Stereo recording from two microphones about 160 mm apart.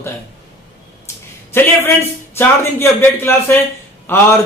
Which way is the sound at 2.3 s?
15° left (ahead or behind).